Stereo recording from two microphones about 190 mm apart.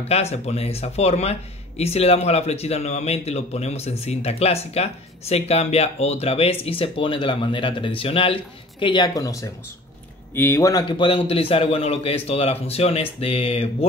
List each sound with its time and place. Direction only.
0.1 s a man's voice: 35° left (ahead or behind)